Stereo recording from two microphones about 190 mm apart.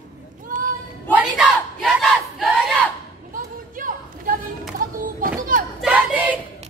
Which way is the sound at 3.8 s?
45° right (ahead or behind).